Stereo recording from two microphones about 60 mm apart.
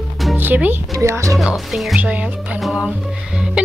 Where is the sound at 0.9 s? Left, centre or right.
Right.